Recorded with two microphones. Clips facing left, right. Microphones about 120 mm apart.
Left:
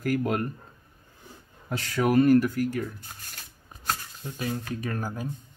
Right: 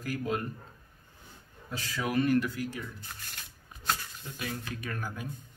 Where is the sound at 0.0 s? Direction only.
60° left (ahead or behind).